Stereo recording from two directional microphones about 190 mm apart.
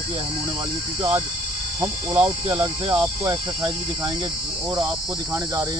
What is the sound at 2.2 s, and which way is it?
Cricket, 25° right (ahead or behind).